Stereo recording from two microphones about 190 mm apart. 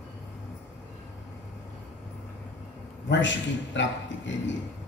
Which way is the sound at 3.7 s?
70° left (ahead or behind).